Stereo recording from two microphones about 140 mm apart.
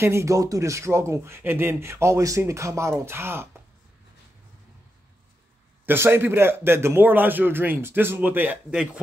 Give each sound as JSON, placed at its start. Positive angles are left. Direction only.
{"t": 0.0, "sound": "speech", "side_deg": -20}
{"t": 5.9, "sound": "a man's voice", "side_deg": -15}